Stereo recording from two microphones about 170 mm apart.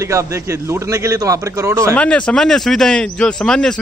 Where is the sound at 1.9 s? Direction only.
5° left (ahead or behind).